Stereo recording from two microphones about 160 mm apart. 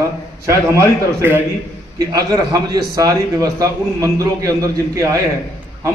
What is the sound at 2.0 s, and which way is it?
A man's voice, 20° right (ahead or behind).